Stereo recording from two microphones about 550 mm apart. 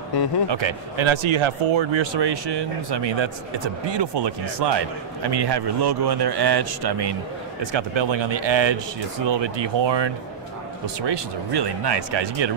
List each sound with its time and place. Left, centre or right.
0.5 s speech: right